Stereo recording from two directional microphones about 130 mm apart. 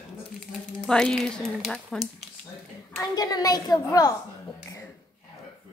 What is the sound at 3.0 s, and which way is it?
A child's voice, 30° left (ahead or behind).